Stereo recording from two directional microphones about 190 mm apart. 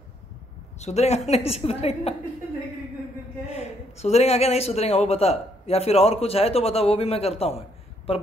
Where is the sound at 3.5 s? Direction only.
35° left (ahead or behind).